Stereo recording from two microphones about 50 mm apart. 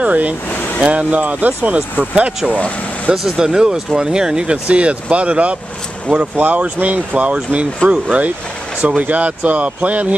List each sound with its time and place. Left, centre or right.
0.0 s speech: right
0.5 s speech: left
0.8 s speech: right
3.1 s speech: centre
6.0 s speech: right